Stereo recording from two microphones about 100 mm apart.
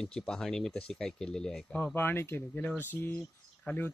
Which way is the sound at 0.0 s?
5° left (ahead or behind).